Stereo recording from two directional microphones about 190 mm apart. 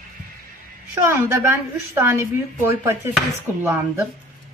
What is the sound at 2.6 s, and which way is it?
Speech, 15° right (ahead or behind).